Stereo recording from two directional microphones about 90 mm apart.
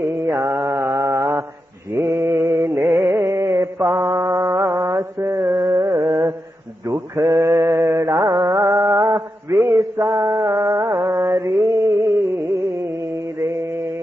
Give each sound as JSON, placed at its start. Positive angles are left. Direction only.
{"t": 0.0, "sound": "mantra", "side_deg": -35}